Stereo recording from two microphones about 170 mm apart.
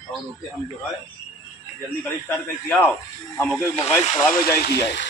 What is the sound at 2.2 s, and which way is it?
Speech, 10° left (ahead or behind).